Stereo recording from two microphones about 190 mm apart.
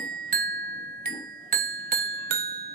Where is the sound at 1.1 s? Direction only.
50° right (ahead or behind).